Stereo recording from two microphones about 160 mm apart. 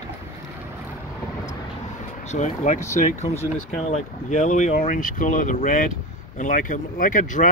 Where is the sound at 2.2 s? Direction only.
50° left (ahead or behind).